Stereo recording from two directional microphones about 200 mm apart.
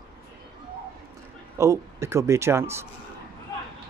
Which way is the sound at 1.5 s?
15° right (ahead or behind).